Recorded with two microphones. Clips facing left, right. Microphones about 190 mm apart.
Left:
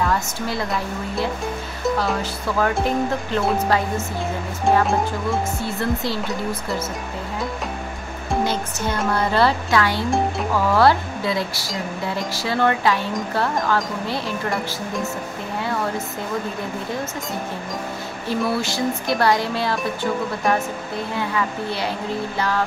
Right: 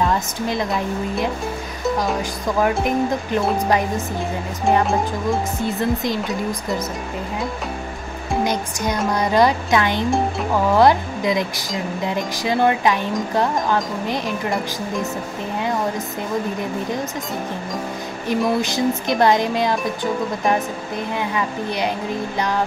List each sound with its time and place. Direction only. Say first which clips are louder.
0.0 s a woman's voice: right 2 dB; 20° right (ahead or behind)
2.8 s speech: right 1 dB; 15° right (ahead or behind)
5.6 s speech: right 3 dB; 20° right (ahead or behind)
8.5 s speech: right 2 dB; 15° right (ahead or behind)
18.3 s speech: right 3 dB; 15° right (ahead or behind)